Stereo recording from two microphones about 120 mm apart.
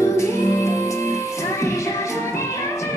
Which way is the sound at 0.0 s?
25° left (ahead or behind).